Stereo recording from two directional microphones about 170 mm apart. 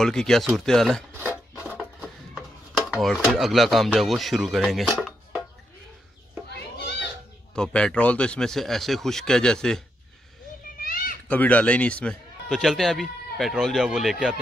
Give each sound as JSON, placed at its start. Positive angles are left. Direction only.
{"t": 0.0, "sound": "speech", "side_deg": 5}
{"t": 1.3, "sound": "filing", "side_deg": 15}
{"t": 1.7, "sound": "a sound", "side_deg": 0}
{"t": 6.8, "sound": "children playing", "side_deg": 75}
{"t": 7.5, "sound": "speech", "side_deg": 5}
{"t": 10.8, "sound": "children playing", "side_deg": 55}
{"t": 11.2, "sound": "speech", "side_deg": 10}